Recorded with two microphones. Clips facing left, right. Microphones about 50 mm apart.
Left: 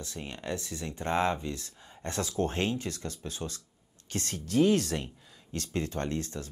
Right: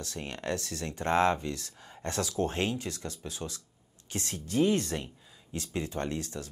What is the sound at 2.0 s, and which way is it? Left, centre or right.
Speech, left.